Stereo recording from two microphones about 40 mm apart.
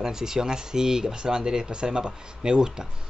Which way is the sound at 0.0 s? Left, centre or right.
Centre.